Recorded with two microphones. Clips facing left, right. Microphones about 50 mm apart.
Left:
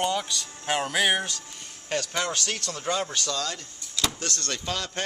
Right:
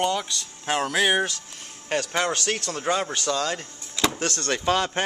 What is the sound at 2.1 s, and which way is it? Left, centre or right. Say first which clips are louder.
Speech: right 4 dB; right.